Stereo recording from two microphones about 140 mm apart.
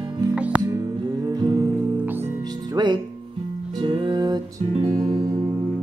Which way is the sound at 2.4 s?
30° right (ahead or behind).